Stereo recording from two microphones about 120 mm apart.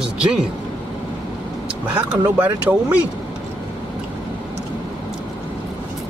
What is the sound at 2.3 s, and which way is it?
Speech, 10° right (ahead or behind).